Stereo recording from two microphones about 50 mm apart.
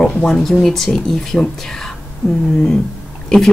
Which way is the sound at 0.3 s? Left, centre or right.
Centre.